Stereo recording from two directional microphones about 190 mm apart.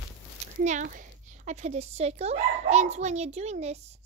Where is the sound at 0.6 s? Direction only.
45° right (ahead or behind).